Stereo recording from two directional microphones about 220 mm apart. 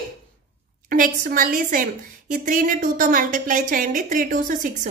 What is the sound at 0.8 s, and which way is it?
A woman's voice, 40° right (ahead or behind).